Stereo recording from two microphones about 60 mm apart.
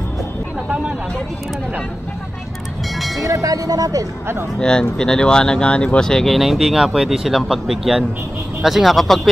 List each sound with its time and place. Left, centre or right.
3.2 s speech: right
4.6 s speech: centre